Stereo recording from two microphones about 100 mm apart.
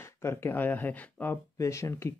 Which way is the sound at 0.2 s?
25° left (ahead or behind).